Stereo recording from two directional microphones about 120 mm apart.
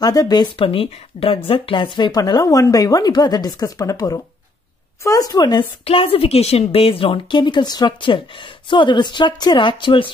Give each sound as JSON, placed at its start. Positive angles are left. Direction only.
{"t": 0.0, "sound": "speech", "side_deg": 30}
{"t": 5.9, "sound": "a woman's voice", "side_deg": 50}